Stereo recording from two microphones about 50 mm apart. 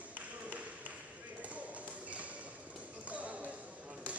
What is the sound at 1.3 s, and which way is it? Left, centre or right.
Basketball bounce, right.